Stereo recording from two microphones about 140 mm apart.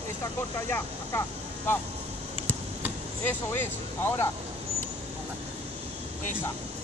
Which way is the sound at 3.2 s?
15° left (ahead or behind).